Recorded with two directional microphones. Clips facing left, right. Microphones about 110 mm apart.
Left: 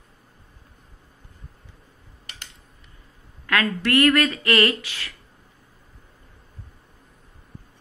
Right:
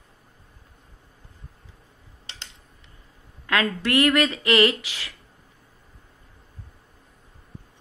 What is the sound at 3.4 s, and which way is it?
Speech, 20° right (ahead or behind).